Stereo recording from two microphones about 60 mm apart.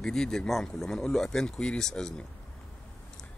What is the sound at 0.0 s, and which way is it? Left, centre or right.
Speech, centre.